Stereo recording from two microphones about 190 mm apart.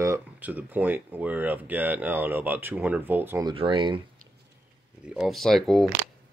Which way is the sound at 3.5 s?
25° right (ahead or behind).